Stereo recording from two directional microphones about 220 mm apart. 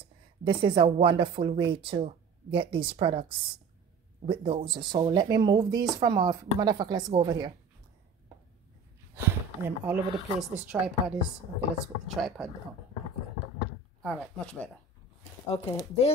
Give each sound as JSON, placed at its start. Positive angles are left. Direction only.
{"t": 0.4, "sound": "speech", "side_deg": -20}
{"t": 9.1, "sound": "speech", "side_deg": -10}
{"t": 14.0, "sound": "speech", "side_deg": 0}
{"t": 15.5, "sound": "speech", "side_deg": 20}